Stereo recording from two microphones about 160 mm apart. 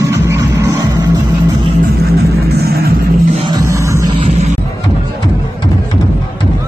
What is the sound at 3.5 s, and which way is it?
Music, 20° right (ahead or behind).